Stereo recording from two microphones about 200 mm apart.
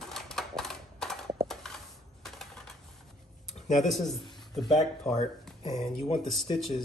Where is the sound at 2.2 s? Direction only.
Centre (ahead or behind).